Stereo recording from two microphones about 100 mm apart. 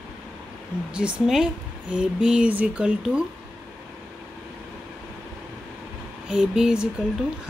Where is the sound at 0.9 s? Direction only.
5° right (ahead or behind).